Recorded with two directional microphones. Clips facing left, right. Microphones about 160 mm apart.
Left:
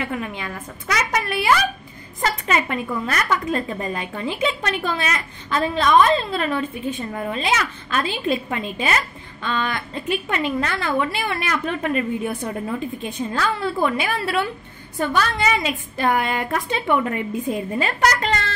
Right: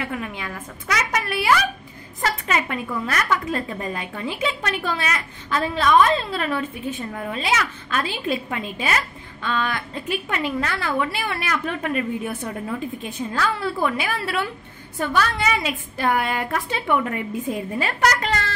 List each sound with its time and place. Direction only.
0.0 s a woman's voice: centre (ahead or behind)
7.1 s a woman's voice: 5° left (ahead or behind)
16.8 s a woman's voice: 15° left (ahead or behind)
17.1 s a woman's voice: 5° right (ahead or behind)